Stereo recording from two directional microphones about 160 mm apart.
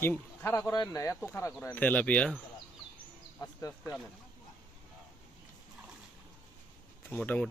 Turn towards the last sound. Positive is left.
turn(degrees=10)  # may be behind; listen again after turning